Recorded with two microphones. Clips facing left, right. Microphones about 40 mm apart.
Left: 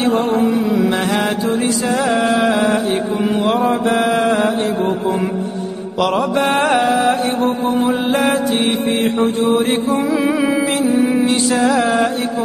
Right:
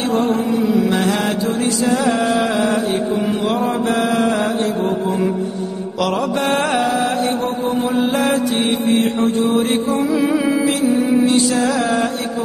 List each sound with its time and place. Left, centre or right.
0.8 s mantra: centre
5.9 s music: centre
7.8 s mantra: centre